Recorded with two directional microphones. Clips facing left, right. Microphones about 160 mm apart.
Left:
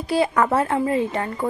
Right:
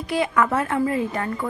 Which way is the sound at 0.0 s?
35° left (ahead or behind).